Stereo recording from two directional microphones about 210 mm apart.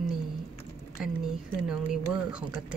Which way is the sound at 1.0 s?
Centre (ahead or behind).